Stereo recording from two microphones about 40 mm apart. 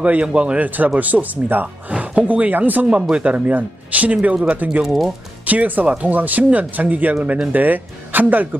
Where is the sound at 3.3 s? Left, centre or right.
Right.